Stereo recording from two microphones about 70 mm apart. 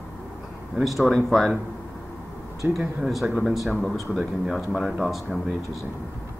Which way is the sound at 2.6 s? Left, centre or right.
Right.